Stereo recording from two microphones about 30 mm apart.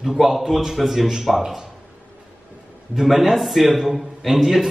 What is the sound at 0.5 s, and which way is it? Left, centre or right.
A man's voice, centre.